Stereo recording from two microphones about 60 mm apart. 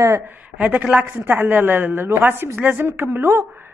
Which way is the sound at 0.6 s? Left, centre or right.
Right.